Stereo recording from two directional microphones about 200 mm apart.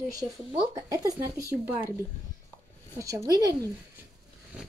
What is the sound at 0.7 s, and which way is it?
Speech, 15° right (ahead or behind).